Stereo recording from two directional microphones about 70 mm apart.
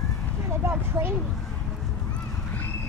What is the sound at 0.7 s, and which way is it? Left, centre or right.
Speech, right.